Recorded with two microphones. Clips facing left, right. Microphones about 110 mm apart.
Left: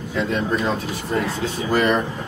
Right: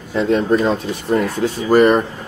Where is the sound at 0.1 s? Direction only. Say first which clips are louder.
Right 7 dB; 40° right (ahead or behind).